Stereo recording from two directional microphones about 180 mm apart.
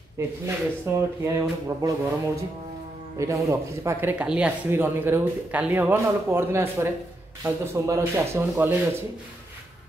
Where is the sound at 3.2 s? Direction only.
15° right (ahead or behind).